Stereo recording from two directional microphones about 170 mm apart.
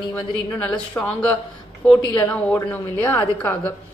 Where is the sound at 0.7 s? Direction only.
5° left (ahead or behind).